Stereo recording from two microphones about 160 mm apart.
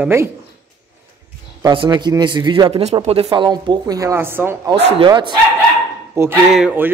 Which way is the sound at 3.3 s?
25° right (ahead or behind).